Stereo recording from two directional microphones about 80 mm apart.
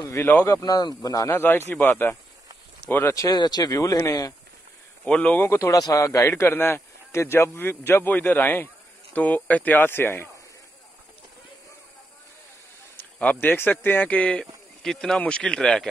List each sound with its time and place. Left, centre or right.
0.2 s speech: left
0.5 s speech: left
1.3 s a man's voice: left
3.2 s speech: left
3.8 s speech: left
5.0 s speech: centre
5.6 s a man's voice: left
13.2 s speech: centre
14.4 s speech: centre
15.1 s speech: centre